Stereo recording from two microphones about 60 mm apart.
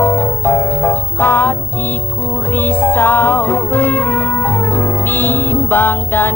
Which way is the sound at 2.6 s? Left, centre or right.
Left.